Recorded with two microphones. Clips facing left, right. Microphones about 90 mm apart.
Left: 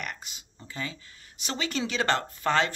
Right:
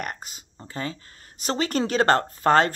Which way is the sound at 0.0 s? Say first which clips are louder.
Right 5 dB; 40° right (ahead or behind).